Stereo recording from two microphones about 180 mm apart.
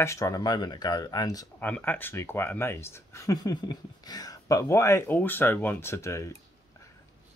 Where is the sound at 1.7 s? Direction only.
10° left (ahead or behind).